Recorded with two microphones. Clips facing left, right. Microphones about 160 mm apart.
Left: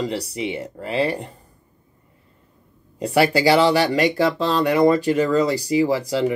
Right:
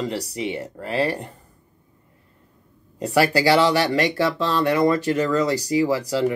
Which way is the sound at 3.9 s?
15° left (ahead or behind).